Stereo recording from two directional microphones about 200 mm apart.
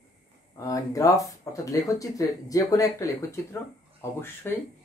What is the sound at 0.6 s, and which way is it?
Speech, 15° left (ahead or behind).